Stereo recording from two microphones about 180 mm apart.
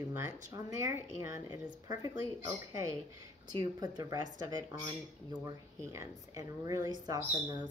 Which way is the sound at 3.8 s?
20° right (ahead or behind).